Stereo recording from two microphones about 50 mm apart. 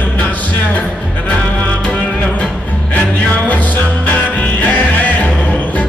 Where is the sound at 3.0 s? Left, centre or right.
Left.